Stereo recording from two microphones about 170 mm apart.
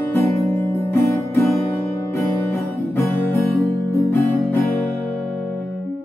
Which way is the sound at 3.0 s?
10° left (ahead or behind).